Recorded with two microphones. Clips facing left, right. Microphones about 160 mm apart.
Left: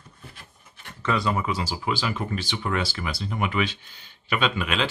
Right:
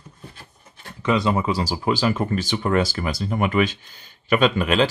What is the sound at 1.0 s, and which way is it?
Speech, 20° right (ahead or behind).